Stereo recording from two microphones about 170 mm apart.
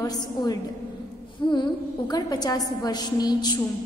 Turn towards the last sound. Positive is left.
turn(degrees=25)  # may be behind; listen again after turning